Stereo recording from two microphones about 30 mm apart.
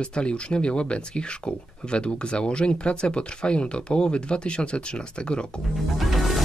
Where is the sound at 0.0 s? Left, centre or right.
Left.